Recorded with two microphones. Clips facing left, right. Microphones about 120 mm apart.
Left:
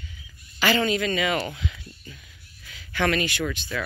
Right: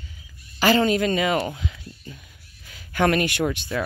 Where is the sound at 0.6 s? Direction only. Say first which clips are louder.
Right 4 dB; 40° right (ahead or behind).